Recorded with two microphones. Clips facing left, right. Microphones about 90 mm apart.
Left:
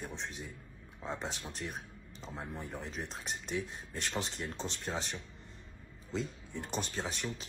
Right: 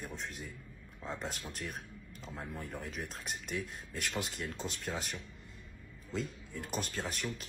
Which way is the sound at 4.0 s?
30° left (ahead or behind).